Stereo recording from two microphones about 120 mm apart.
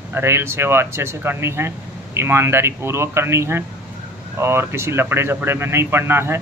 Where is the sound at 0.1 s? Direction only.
20° right (ahead or behind).